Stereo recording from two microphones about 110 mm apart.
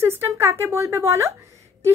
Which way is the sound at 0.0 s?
25° right (ahead or behind).